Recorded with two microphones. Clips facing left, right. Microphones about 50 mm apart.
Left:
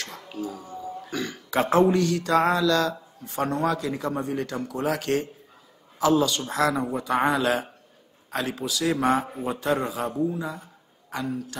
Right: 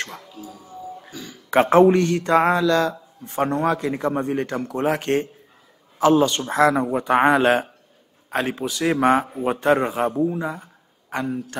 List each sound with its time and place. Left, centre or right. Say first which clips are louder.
0.3 s a man's voice: left 5 dB; left
1.5 s a man's voice: right 6 dB; right